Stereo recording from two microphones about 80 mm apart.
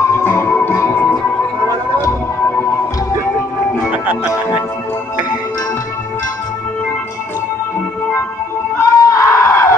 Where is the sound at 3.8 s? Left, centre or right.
Right.